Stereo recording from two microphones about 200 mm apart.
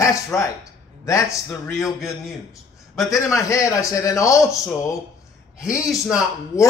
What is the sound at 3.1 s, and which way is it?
A man's voice, 15° left (ahead or behind).